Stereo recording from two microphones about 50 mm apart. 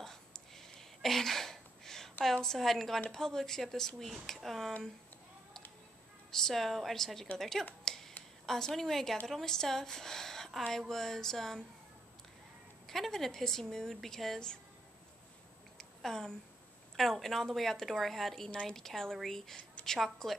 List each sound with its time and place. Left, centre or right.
0.0 s a sound: centre
2.3 s a woman's voice: centre
6.3 s speech: centre
7.8 s a sound: centre
8.5 s a woman's voice: centre
12.8 s a woman's voice: centre
15.8 s a sound: centre
16.9 s a woman's voice: centre
20.0 s speech: centre